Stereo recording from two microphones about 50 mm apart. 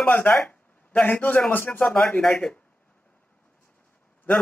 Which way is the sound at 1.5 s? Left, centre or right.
Left.